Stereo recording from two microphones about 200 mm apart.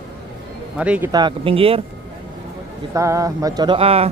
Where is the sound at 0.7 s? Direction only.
5° right (ahead or behind).